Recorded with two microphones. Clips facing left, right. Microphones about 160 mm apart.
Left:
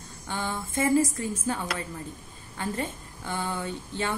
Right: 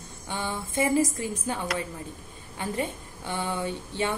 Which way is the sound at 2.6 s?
15° right (ahead or behind).